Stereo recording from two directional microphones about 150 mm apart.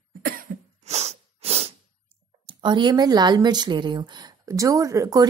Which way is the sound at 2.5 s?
30° right (ahead or behind).